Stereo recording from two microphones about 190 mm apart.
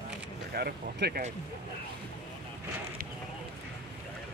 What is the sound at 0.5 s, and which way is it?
Speech, 55° right (ahead or behind).